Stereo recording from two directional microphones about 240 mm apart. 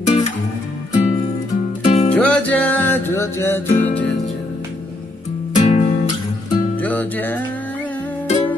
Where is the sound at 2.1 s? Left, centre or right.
Centre.